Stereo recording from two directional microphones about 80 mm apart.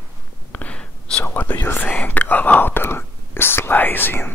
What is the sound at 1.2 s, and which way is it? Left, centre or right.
Speech, left.